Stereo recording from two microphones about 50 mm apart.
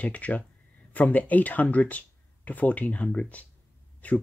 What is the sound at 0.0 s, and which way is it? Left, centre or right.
Speech, left.